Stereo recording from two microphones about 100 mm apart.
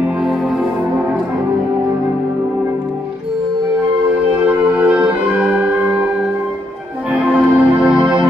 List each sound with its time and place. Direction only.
4.5 s music: 15° right (ahead or behind)
5.6 s singing bowl: 20° right (ahead or behind)
7.1 s music: 10° right (ahead or behind)